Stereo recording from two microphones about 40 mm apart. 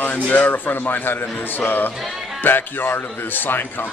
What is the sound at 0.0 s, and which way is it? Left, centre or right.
A man's voice, left.